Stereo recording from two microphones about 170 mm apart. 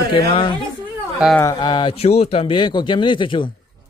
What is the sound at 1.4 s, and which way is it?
Speech, 25° left (ahead or behind).